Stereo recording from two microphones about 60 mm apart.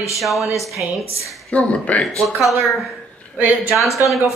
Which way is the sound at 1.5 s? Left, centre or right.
Left.